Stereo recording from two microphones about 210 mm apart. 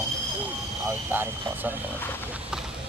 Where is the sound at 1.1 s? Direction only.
10° right (ahead or behind).